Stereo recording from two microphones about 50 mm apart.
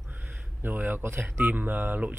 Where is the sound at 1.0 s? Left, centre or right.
Right.